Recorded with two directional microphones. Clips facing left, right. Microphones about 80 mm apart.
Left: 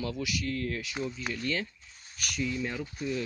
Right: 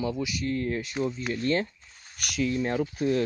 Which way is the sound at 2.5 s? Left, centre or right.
Right.